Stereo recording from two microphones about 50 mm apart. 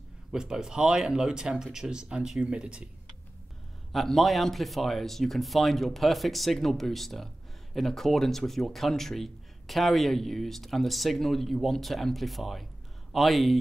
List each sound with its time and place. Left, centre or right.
0.3 s speech: centre
3.9 s a man's voice: centre